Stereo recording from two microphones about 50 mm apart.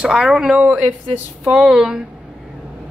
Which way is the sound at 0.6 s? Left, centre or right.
Right.